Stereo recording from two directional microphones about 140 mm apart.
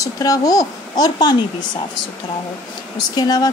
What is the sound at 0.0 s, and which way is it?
Speech, 25° left (ahead or behind).